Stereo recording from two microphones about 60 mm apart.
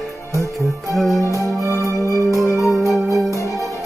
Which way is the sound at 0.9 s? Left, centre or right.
Centre.